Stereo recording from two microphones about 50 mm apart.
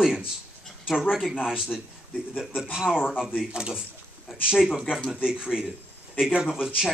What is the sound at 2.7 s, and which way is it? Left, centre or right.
A man's voice, centre.